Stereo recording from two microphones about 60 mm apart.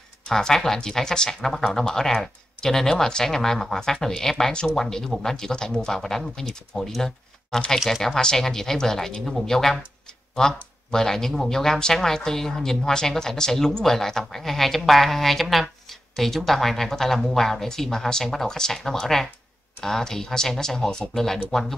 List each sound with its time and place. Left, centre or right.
0.3 s speech: centre